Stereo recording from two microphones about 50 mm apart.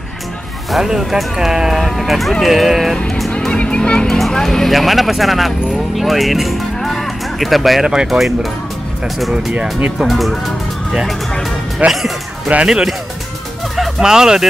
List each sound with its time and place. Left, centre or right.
0.7 s speech: centre
3.3 s a sound: centre
4.3 s speech: centre
6.8 s cattle: centre
7.8 s speech: centre
10.0 s speech: centre
11.8 s speech: right
12.6 s speech: centre
13.7 s music: centre
14.0 s speech: centre